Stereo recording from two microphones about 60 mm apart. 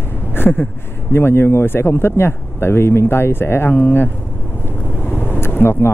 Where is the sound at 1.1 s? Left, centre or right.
Left.